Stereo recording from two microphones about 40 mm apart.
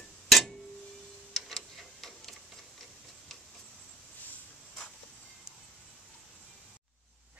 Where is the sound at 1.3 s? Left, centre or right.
Centre.